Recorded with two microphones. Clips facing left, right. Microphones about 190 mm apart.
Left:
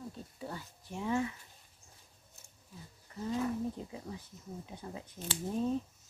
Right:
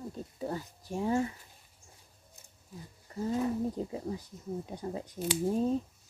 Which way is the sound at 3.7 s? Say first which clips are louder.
Right 8 dB; 40° right (ahead or behind).